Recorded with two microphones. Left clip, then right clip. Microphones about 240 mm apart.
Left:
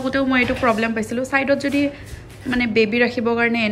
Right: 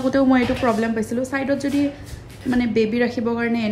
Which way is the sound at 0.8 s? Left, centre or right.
Centre.